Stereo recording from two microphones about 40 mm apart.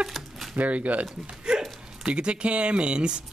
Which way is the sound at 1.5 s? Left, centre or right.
Centre.